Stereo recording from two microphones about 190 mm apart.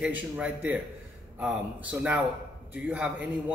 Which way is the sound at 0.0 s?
5° right (ahead or behind).